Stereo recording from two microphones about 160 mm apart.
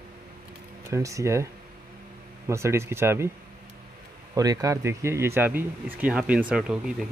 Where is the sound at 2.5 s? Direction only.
15° right (ahead or behind).